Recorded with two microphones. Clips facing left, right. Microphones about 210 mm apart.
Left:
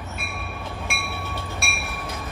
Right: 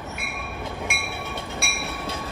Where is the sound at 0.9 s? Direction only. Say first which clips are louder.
Even; 20° right (ahead or behind).